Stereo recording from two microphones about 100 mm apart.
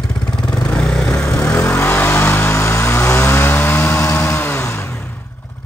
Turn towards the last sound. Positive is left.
turn(degrees=25)  # may be behind; listen again after turning